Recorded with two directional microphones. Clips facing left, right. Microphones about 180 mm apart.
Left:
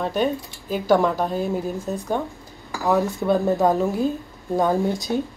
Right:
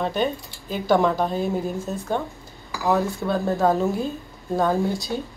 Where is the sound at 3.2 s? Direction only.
15° left (ahead or behind).